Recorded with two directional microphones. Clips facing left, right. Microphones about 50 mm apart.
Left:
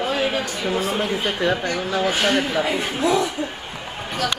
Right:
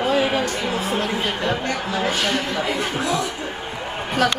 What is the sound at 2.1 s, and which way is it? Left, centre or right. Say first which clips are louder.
Speech: left 4 dB; centre.